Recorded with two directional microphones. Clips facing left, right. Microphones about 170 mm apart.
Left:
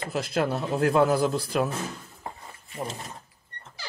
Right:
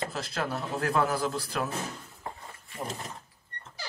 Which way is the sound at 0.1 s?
15° left (ahead or behind).